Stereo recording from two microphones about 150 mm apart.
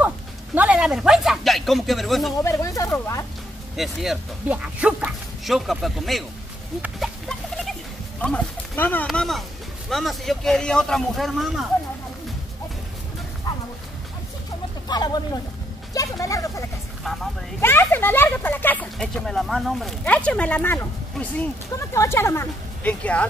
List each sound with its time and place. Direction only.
0.6 s speech: 5° right (ahead or behind)
2.4 s speech: 20° left (ahead or behind)
3.7 s speech: centre (ahead or behind)
6.8 s chicken: centre (ahead or behind)
8.2 s speech: 10° left (ahead or behind)
13.5 s a sound: 25° left (ahead or behind)
14.9 s speech: 25° left (ahead or behind)
17.0 s speech: centre (ahead or behind)
17.6 s speech: 15° left (ahead or behind)